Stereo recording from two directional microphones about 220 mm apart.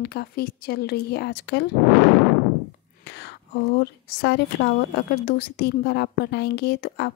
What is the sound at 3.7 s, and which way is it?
A woman's voice, 50° left (ahead or behind).